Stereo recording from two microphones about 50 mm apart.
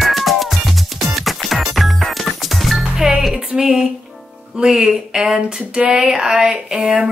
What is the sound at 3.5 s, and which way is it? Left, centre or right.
Speech, centre.